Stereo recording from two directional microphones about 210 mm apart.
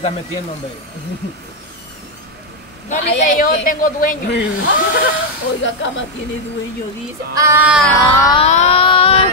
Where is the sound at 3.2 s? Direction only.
40° left (ahead or behind).